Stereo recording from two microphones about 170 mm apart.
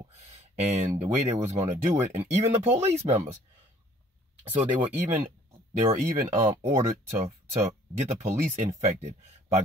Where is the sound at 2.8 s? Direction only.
40° right (ahead or behind).